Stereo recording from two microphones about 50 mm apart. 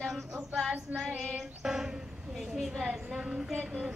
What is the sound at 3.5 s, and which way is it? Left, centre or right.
Music, centre.